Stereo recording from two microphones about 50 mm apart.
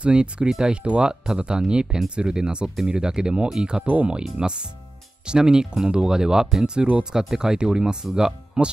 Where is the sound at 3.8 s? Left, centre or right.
Right.